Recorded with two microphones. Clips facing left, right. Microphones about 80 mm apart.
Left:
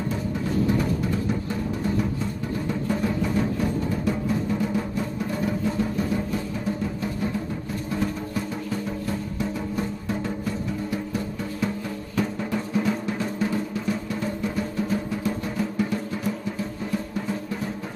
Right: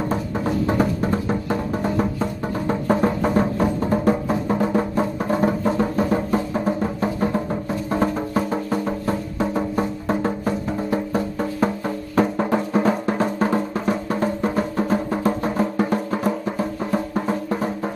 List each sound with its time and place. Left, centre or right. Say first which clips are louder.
0.7 s music: right 4 dB; right
12.2 s drum: right 7 dB; right